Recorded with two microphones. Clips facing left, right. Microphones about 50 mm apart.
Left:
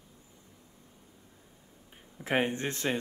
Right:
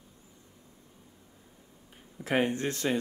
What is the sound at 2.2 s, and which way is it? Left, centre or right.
Speech, left.